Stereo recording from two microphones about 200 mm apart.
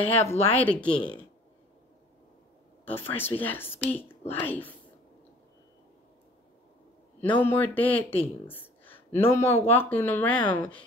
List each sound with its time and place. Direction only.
0.0 s speech: 30° left (ahead or behind)
0.6 s speech: 5° left (ahead or behind)
3.2 s speech: 10° left (ahead or behind)
7.2 s speech: 10° left (ahead or behind)